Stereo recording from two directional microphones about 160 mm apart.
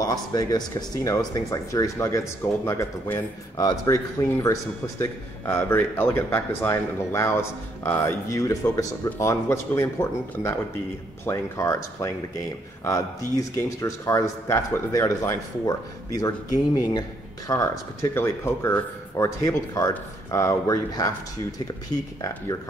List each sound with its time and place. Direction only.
0.0 s speech: 25° left (ahead or behind)
17.5 s speech: 20° left (ahead or behind)